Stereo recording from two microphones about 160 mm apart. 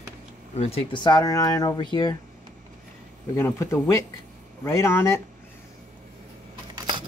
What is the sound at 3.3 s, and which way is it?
Speech, 15° left (ahead or behind).